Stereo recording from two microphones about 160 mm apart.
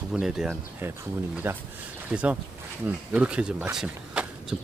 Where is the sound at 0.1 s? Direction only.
5° right (ahead or behind).